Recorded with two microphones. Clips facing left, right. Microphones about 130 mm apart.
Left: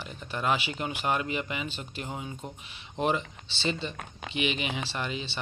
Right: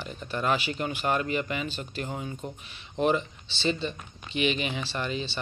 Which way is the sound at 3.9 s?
70° left (ahead or behind).